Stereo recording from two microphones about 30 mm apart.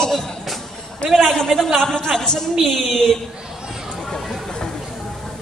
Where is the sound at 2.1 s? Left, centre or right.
Centre.